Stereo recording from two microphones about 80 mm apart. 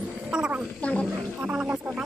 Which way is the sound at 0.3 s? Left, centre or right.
Centre.